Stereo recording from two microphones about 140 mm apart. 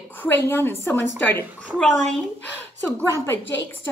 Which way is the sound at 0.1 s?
15° left (ahead or behind).